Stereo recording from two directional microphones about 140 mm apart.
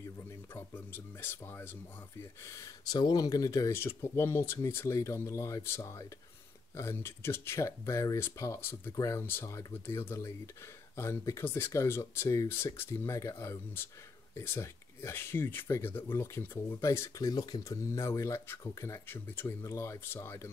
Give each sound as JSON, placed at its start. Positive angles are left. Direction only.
{"t": 0.6, "sound": "speech", "side_deg": 15}